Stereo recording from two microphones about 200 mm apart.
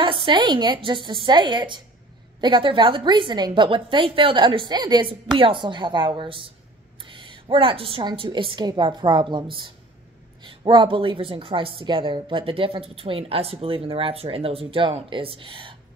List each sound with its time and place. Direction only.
0.0 s a woman's voice: 25° right (ahead or behind)